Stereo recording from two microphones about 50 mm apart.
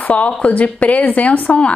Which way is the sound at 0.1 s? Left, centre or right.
Left.